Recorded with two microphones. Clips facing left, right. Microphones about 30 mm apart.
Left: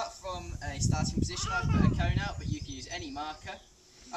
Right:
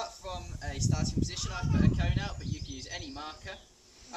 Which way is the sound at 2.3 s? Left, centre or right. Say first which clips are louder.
Left 1 dB; centre.